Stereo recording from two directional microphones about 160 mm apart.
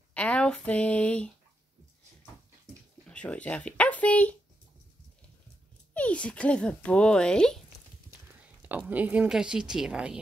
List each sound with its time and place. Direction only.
0.1 s a sound: 5° left (ahead or behind)
3.1 s speech: 5° left (ahead or behind)
5.9 s speech: 10° left (ahead or behind)
8.6 s speech: 10° right (ahead or behind)